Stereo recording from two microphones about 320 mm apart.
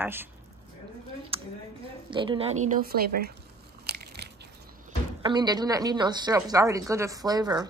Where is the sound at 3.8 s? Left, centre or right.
Right.